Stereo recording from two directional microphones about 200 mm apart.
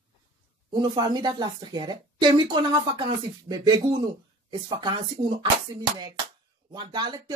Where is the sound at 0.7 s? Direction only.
20° right (ahead or behind).